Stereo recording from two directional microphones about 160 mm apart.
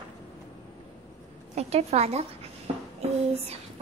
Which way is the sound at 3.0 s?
40° right (ahead or behind).